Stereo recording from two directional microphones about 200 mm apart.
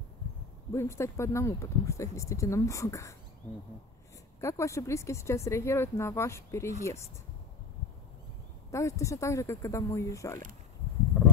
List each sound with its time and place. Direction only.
0.7 s speech: 15° left (ahead or behind)
4.4 s speech: 15° left (ahead or behind)
8.6 s speech: 15° left (ahead or behind)